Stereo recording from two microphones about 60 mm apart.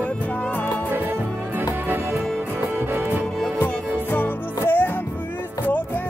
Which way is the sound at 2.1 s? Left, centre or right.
Centre.